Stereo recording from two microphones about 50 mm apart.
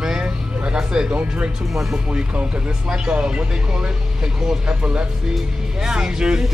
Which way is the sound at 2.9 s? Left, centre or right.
Centre.